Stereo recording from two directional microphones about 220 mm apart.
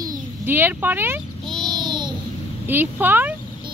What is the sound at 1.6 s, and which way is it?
Babbling, 20° right (ahead or behind).